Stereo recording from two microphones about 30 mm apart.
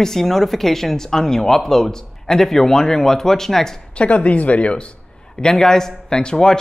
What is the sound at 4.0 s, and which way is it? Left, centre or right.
Speech, left.